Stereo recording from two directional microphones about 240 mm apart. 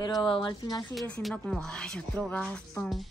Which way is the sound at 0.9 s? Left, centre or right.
Centre.